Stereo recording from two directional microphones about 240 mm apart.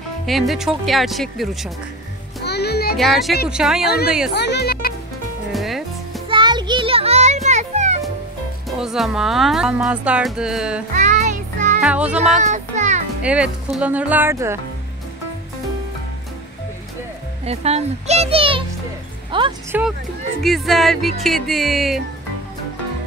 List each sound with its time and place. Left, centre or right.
0.3 s speech: centre
2.4 s music: left
3.0 s speech: centre
4.3 s speech: left
5.5 s music: centre
6.2 s music: centre
8.6 s speech: centre
11.0 s music: right
11.8 s speech: centre
12.4 s child singing: right
13.2 s speech: centre
17.5 s a child's voice: right
19.7 s speech: centre